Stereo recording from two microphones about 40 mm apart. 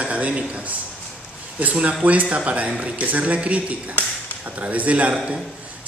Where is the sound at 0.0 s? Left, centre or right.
Right.